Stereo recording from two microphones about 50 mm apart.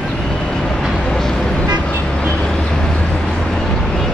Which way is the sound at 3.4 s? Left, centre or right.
Centre.